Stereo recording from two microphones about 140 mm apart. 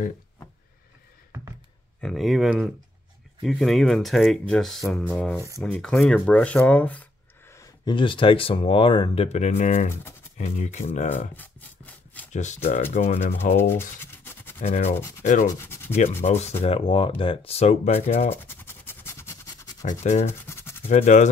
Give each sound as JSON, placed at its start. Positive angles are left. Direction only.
{"t": 2.0, "sound": "speech", "side_deg": 0}
{"t": 7.8, "sound": "speech", "side_deg": 35}
{"t": 11.3, "sound": "rub", "side_deg": 10}
{"t": 12.3, "sound": "speech", "side_deg": 60}
{"t": 13.6, "sound": "scratch", "side_deg": 15}
{"t": 14.6, "sound": "speech", "side_deg": 50}
{"t": 15.2, "sound": "speech", "side_deg": 65}
{"t": 15.6, "sound": "rub", "side_deg": 15}
{"t": 16.0, "sound": "speech", "side_deg": 55}
{"t": 18.3, "sound": "a sound", "side_deg": 15}
{"t": 20.0, "sound": "speech", "side_deg": 55}
{"t": 20.4, "sound": "scratch", "side_deg": 20}
{"t": 20.9, "sound": "speech", "side_deg": 60}